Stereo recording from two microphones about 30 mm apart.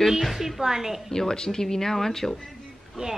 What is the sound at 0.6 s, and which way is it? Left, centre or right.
Speech, centre.